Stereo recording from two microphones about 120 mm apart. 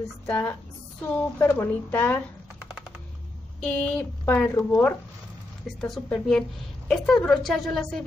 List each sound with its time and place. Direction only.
0.3 s speech: 15° left (ahead or behind)
3.6 s speech: 10° left (ahead or behind)
6.0 s a woman's voice: 5° left (ahead or behind)